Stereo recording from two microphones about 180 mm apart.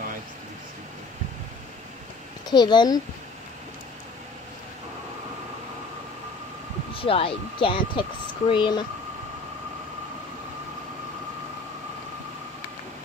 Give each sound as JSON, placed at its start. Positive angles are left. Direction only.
{"t": 2.5, "sound": "speech", "side_deg": 25}
{"t": 6.9, "sound": "speech", "side_deg": 30}